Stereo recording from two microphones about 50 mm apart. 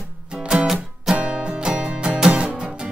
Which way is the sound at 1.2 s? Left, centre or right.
Right.